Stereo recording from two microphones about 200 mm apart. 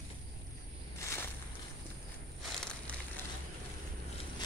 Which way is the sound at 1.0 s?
15° left (ahead or behind).